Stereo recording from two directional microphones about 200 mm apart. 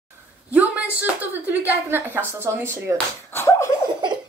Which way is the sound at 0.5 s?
10° right (ahead or behind).